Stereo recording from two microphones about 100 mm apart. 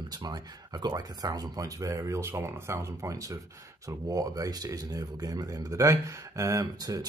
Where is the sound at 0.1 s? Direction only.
45° right (ahead or behind).